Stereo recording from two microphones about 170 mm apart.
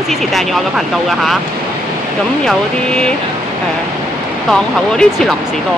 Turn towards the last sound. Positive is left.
turn(degrees=0)  # may be behind; listen again after turning